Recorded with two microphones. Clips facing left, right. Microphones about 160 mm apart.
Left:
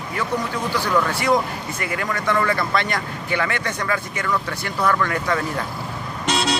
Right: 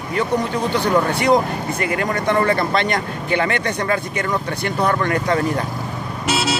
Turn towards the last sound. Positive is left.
turn(degrees=-5)  # may be behind; listen again after turning